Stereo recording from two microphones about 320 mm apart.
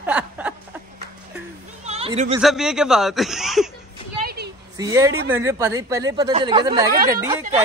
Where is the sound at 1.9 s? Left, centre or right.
Centre.